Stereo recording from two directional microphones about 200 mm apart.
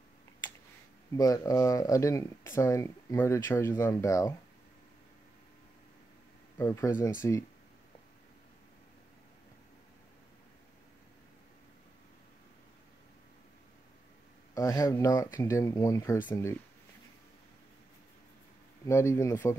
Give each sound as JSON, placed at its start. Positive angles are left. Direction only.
{"t": 1.1, "sound": "speech", "side_deg": 15}
{"t": 6.6, "sound": "speech", "side_deg": 15}
{"t": 14.5, "sound": "speech", "side_deg": 15}
{"t": 18.9, "sound": "speech", "side_deg": 15}